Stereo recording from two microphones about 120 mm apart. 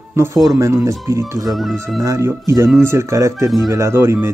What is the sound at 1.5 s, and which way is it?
Speech, centre (ahead or behind).